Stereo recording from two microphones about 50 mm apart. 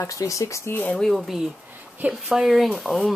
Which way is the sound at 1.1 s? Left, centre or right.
Centre.